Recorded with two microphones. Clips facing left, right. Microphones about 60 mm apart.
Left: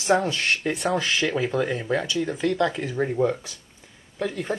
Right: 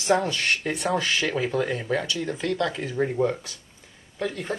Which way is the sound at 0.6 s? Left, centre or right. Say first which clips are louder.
Left 1 dB; centre.